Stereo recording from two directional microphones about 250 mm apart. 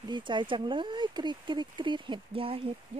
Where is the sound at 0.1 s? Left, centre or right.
Centre.